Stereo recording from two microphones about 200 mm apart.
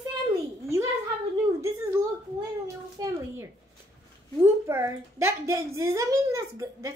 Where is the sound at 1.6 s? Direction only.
15° right (ahead or behind).